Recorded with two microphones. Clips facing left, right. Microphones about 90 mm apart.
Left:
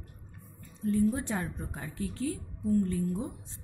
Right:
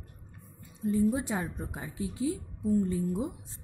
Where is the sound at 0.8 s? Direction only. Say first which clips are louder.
Right 1 dB; 10° right (ahead or behind).